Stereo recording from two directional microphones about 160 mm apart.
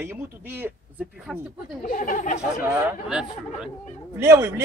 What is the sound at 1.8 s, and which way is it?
Speech, 55° left (ahead or behind).